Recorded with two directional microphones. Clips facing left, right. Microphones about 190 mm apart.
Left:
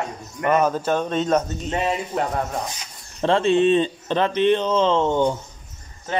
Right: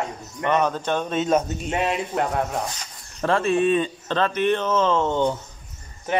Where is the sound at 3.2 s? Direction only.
20° left (ahead or behind).